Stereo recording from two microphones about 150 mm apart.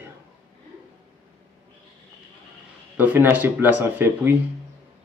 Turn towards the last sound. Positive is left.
turn(degrees=-15)  # may be behind; listen again after turning